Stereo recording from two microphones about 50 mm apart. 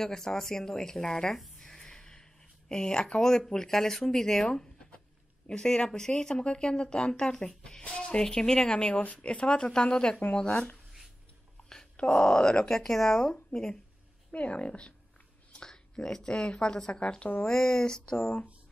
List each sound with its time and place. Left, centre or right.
0.0 s speech: centre
1.6 s a sound: centre
2.7 s speech: centre
7.8 s speech: left
11.7 s a woman's voice: centre
17.5 s speech: centre
18.1 s speech: left